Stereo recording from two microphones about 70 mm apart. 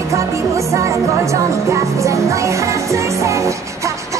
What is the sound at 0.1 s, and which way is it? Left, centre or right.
Music, right.